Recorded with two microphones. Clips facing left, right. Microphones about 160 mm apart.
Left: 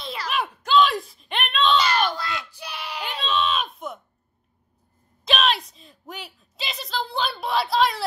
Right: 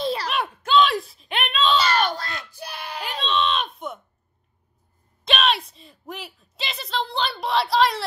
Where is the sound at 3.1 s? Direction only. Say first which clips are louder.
Right 1 dB; centre (ahead or behind).